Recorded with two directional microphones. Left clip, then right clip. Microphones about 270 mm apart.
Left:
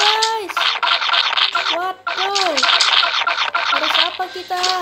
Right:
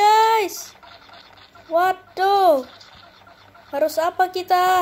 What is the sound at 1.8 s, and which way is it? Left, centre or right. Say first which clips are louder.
Speech: right 2 dB; centre.